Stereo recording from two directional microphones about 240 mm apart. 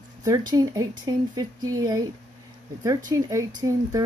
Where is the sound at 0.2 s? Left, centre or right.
Centre.